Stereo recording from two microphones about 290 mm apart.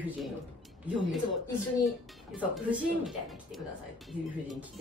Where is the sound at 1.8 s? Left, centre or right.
Centre.